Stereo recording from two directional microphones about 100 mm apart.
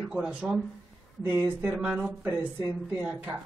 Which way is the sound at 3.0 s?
10° right (ahead or behind).